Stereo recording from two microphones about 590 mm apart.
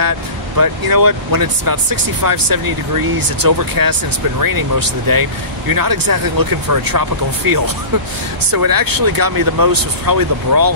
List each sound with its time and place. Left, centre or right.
0.6 s speech: right